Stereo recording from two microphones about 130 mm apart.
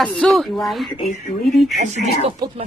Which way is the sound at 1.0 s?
85° left.